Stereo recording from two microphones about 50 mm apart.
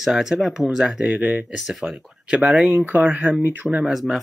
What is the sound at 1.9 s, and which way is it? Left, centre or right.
Speech, right.